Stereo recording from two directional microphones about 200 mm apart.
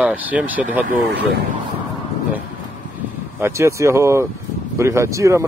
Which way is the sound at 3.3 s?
10° right (ahead or behind).